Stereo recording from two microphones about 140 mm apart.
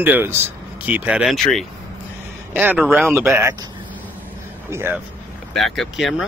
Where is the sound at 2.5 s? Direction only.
15° right (ahead or behind).